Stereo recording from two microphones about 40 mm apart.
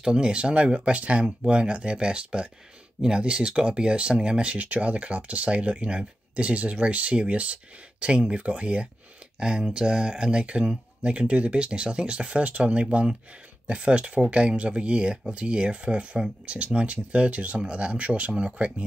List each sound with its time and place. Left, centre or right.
0.0 s speech: right
9.4 s speech: centre